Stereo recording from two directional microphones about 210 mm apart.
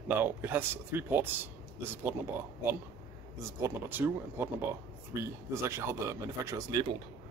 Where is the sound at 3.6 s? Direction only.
10° right (ahead or behind).